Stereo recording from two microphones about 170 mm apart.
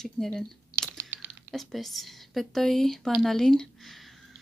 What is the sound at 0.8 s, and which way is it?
Crunch, 10° right (ahead or behind).